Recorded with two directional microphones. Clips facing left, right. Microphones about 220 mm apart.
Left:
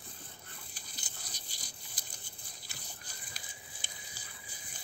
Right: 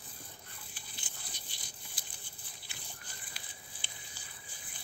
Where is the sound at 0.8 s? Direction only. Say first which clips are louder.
Even; 40° left (ahead or behind).